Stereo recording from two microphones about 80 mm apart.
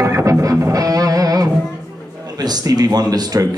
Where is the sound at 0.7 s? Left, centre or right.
Right.